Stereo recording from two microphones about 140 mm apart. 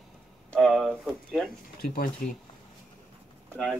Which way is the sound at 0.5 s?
Centre (ahead or behind).